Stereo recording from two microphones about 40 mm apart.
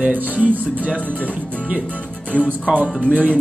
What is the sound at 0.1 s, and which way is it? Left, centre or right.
Speech, right.